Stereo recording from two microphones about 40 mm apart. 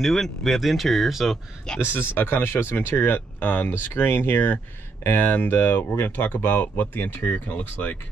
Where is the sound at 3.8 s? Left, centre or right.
Left.